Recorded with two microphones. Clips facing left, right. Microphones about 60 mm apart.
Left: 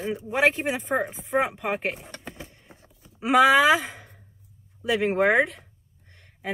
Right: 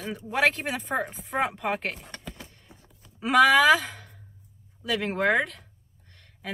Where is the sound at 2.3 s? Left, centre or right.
Centre.